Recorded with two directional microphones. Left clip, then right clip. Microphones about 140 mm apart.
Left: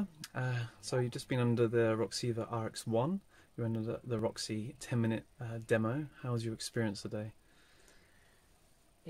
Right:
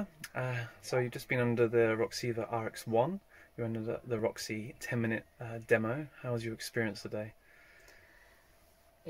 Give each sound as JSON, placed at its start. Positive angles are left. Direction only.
{"t": 0.2, "sound": "speech", "side_deg": 45}